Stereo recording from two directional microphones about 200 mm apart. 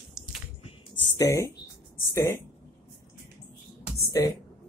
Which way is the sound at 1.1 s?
15° left (ahead or behind).